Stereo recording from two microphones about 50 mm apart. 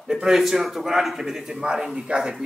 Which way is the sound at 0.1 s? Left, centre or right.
Centre.